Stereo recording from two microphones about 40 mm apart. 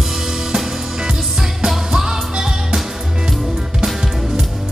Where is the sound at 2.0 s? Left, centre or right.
Centre.